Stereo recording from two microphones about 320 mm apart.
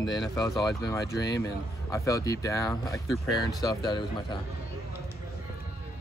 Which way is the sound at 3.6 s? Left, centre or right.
Centre.